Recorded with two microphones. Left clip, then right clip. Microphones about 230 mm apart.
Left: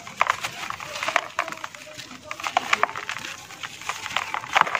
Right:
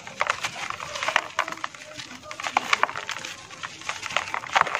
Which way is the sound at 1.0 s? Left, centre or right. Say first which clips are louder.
Even; centre.